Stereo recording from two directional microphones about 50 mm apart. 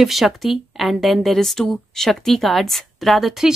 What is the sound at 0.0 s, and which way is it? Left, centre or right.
Speech, centre.